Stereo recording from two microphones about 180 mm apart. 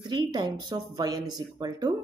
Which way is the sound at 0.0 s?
25° right (ahead or behind).